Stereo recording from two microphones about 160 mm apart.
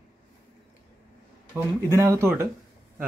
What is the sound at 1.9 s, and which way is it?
Mantra, 15° right (ahead or behind).